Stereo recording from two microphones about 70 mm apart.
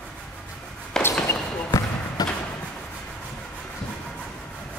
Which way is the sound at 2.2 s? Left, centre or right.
Left.